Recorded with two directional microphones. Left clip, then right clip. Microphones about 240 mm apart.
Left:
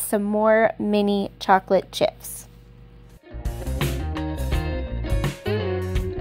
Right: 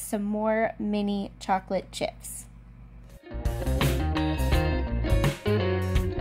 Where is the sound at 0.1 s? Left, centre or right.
Left.